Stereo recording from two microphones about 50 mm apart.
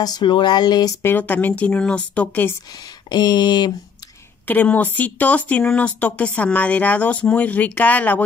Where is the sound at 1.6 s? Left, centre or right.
Left.